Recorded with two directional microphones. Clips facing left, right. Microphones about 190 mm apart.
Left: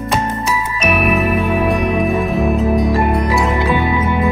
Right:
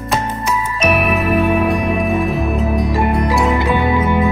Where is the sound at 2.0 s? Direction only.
Centre (ahead or behind).